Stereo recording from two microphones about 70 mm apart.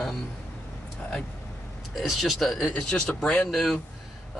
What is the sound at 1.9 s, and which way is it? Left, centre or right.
Speech, centre.